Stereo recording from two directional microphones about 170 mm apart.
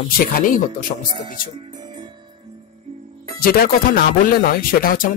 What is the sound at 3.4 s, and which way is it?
Speech, 60° left (ahead or behind).